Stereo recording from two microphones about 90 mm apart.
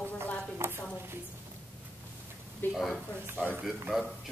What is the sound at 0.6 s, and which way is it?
Speech, 30° right (ahead or behind).